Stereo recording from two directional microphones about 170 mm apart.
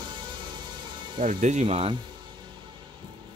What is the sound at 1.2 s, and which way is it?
Speech, 50° right (ahead or behind).